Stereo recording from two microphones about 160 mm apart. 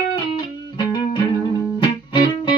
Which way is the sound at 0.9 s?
30° left (ahead or behind).